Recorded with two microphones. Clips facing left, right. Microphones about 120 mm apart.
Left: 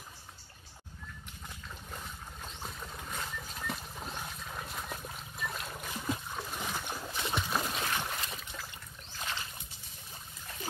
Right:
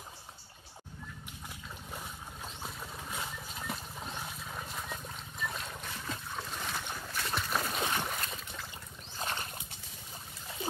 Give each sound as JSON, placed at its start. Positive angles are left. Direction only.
{"t": 1.9, "sound": "boat", "side_deg": -5}
{"t": 7.2, "sound": "boat", "side_deg": 0}
{"t": 9.2, "sound": "boat", "side_deg": -45}